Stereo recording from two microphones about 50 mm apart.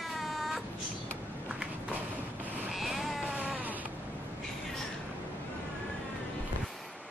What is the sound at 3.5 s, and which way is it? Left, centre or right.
Baby cry, right.